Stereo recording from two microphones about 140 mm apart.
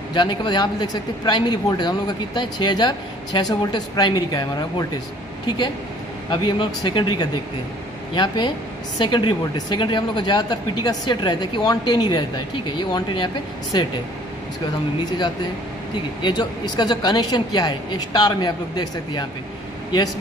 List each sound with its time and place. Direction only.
0.1 s speech: 35° left (ahead or behind)
6.3 s speech: 35° left (ahead or behind)
16.2 s speech: 30° left (ahead or behind)